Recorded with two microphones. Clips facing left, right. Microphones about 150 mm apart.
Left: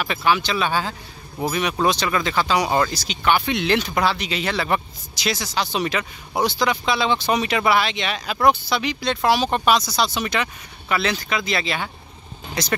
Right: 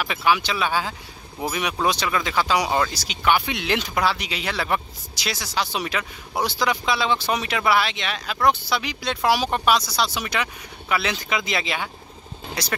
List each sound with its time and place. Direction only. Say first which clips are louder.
0.0 s speech: left 1 dB; 5° right (ahead or behind)